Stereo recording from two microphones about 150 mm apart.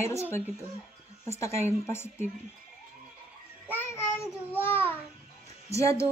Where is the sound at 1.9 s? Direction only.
15° left (ahead or behind).